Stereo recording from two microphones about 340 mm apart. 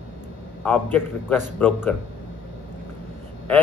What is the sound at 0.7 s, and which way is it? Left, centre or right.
Speech, centre.